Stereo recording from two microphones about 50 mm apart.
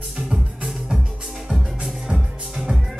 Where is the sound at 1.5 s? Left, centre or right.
Centre.